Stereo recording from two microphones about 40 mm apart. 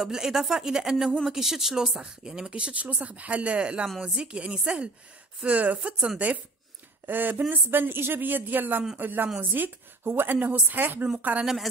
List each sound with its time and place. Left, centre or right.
0.0 s speech: centre
2.0 s a woman's voice: right
5.5 s speech: right
7.1 s a woman's voice: right